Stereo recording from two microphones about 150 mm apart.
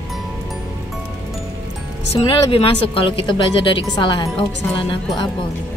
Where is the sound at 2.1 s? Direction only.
40° left (ahead or behind).